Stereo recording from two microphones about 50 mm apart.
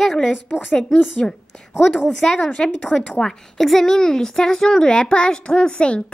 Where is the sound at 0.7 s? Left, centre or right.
Centre.